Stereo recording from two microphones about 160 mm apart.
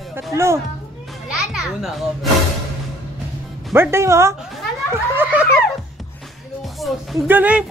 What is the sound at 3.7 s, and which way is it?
Speech, 15° right (ahead or behind).